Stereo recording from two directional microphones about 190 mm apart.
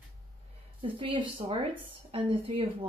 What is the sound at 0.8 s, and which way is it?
A woman's voice, 25° right (ahead or behind).